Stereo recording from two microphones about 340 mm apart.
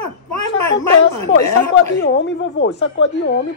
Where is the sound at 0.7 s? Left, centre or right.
Left.